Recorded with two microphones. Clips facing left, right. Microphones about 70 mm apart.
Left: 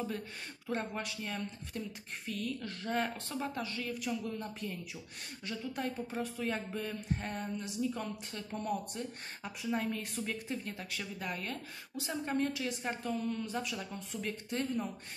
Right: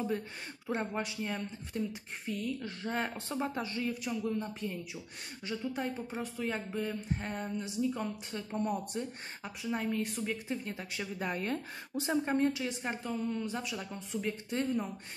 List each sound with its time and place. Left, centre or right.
0.7 s speech: centre
4.0 s speech: centre; by 12.2 s right
12.3 s speech: centre
12.6 s a woman's voice: centre